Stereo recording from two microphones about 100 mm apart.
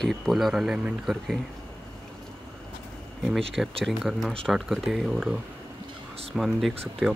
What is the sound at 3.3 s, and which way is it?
Speech, centre (ahead or behind).